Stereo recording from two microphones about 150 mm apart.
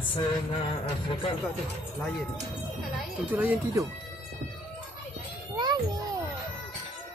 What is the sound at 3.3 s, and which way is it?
Speech, 10° right (ahead or behind).